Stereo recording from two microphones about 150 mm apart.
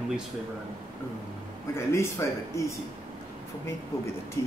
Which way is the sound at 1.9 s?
15° left (ahead or behind).